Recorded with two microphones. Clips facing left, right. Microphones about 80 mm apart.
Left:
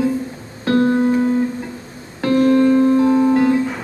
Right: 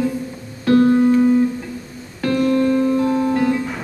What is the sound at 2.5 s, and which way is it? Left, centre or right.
Music, left.